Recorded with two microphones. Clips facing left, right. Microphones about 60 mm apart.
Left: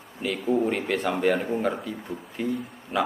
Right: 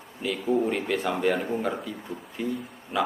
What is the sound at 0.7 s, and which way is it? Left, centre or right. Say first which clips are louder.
A man's voice: left 1 dB; centre.